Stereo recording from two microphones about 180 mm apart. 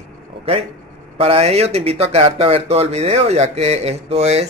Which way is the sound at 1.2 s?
35° right (ahead or behind).